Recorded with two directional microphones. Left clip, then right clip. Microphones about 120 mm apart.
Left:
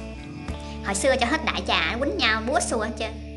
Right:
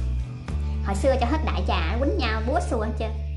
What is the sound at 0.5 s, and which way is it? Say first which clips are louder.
A woman's voice: left 2 dB; 10° right (ahead or behind).